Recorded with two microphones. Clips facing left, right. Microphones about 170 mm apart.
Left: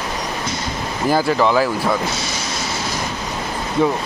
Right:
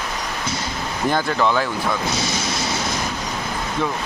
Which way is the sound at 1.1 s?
5° left (ahead or behind).